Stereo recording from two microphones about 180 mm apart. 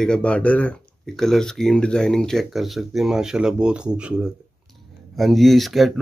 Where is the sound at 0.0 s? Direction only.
5° left (ahead or behind).